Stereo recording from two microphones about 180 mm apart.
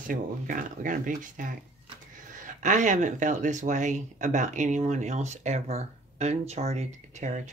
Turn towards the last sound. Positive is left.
turn(degrees=-40)  # may be behind; listen again after turning